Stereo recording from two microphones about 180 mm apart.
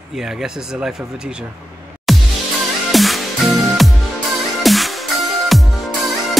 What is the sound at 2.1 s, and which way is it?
Music, centre (ahead or behind).